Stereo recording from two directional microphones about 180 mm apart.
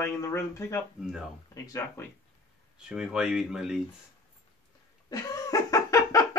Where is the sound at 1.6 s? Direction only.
15° left (ahead or behind).